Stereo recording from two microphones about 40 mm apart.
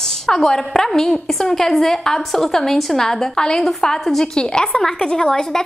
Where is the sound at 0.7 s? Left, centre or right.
Centre.